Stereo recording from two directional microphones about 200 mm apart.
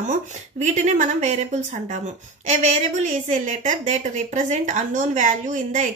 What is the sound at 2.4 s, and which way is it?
Speech, 35° right (ahead or behind).